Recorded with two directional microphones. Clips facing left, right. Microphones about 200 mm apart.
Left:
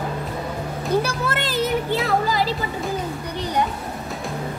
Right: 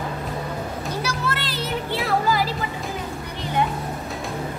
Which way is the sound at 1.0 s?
50° left (ahead or behind).